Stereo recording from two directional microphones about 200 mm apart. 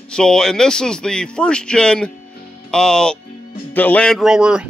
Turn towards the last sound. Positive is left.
turn(degrees=-5)  # may be behind; listen again after turning